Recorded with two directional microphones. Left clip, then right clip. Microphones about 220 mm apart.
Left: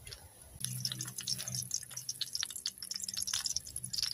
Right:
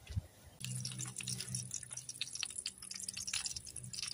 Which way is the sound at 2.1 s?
5° left (ahead or behind).